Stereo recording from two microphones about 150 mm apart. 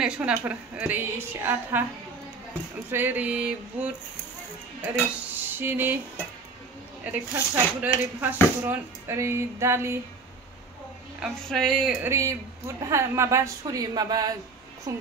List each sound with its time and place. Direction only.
0.0 s speech: 10° right (ahead or behind)
2.9 s speech: 15° right (ahead or behind)
5.5 s a sound: 15° right (ahead or behind)
7.1 s speech: 10° right (ahead or behind)
11.1 s music: centre (ahead or behind)
12.0 s a woman's voice: 20° right (ahead or behind)